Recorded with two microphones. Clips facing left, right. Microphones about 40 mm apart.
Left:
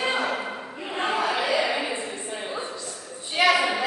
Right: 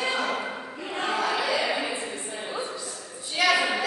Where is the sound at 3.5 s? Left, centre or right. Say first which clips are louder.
Left 1 dB; centre.